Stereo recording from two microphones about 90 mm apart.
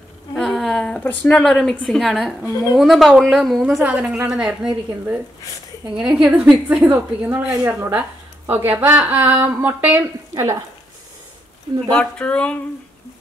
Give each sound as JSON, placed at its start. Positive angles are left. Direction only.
{"t": 0.3, "sound": "a sound", "side_deg": 5}
{"t": 1.2, "sound": "speech", "side_deg": 10}
{"t": 3.8, "sound": "a woman's voice", "side_deg": -10}
{"t": 10.3, "sound": "speech", "side_deg": -40}
{"t": 11.9, "sound": "speech", "side_deg": 10}